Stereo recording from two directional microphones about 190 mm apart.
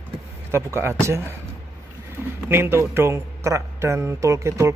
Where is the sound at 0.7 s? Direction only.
15° right (ahead or behind).